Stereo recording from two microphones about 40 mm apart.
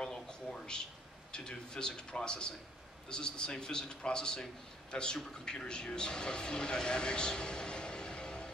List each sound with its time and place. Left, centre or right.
0.0 s a man's voice: centre